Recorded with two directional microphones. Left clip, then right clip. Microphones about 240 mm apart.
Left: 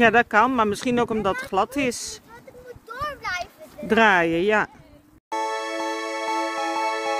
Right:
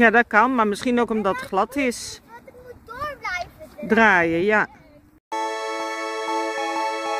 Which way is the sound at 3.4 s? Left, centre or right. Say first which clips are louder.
Right 1 dB; centre.